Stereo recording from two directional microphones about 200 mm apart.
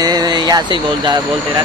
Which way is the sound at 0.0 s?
20° right (ahead or behind).